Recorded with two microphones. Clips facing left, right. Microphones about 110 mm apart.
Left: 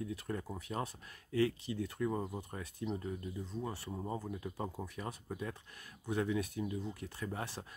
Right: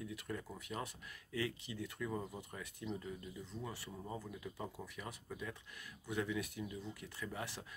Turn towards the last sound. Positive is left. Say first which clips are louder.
# left 4 dB
turn(degrees=35)  # may be behind; listen again after turning